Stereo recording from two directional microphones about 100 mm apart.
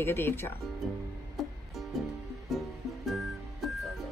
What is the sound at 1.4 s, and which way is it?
Music, centre (ahead or behind).